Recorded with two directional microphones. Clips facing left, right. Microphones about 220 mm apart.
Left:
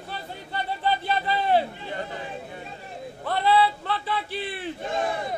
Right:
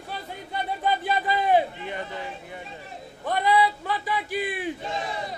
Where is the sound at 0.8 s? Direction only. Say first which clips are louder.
Even; 10° right (ahead or behind).